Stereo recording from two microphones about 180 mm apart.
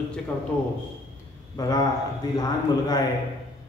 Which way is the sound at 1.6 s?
20° left (ahead or behind).